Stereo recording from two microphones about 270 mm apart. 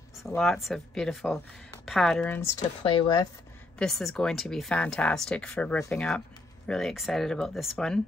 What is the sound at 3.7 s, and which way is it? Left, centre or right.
Speech, centre.